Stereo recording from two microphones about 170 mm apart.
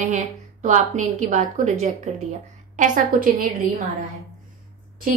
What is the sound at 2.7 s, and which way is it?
Speech, 50° right (ahead or behind).